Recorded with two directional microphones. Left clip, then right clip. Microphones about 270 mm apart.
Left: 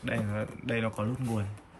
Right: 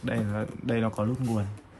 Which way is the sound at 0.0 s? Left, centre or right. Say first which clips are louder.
Right 2 dB; centre.